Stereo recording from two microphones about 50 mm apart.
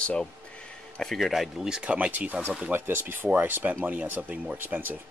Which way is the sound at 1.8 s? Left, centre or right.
Right.